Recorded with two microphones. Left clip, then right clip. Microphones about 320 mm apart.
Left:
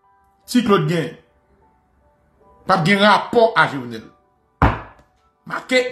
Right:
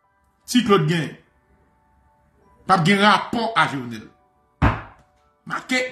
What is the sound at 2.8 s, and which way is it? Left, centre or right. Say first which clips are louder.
Speech: left 5 dB; centre.